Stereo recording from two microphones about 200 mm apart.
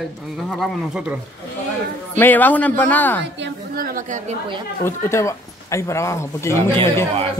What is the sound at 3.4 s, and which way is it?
Speech, 45° right (ahead or behind).